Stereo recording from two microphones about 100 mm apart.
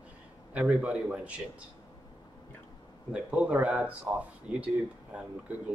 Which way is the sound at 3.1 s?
15° right (ahead or behind).